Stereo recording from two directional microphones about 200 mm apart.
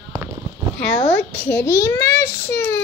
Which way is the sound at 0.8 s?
10° left (ahead or behind).